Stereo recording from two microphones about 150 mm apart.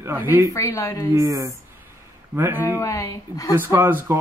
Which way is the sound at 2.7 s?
20° left (ahead or behind).